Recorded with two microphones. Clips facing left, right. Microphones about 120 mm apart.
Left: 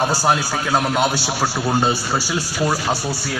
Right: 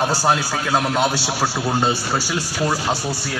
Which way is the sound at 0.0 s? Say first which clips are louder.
Left 1 dB; centre (ahead or behind).